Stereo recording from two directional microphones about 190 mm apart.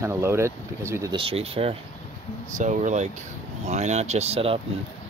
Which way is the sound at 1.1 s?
30° right (ahead or behind).